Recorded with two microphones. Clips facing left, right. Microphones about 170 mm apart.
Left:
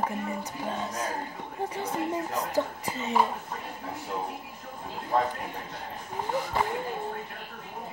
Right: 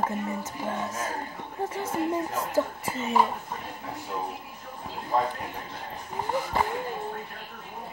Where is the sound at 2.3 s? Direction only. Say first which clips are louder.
Right 1 dB; 15° left (ahead or behind).